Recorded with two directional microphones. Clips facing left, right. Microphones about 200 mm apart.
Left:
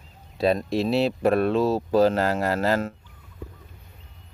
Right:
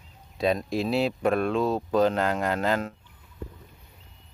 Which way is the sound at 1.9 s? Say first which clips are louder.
Left 3 dB; 35° left (ahead or behind).